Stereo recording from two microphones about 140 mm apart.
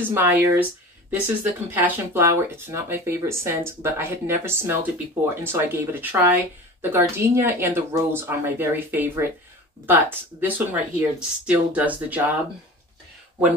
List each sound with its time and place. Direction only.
0.0 s speech: 15° right (ahead or behind)